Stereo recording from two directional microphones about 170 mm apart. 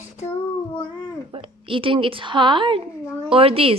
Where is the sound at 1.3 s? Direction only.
30° right (ahead or behind).